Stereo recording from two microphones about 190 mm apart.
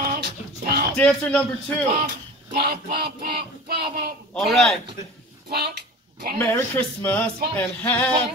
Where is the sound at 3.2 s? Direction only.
55° right (ahead or behind).